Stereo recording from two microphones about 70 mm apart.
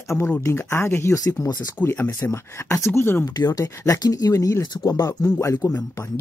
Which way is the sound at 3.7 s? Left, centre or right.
Left.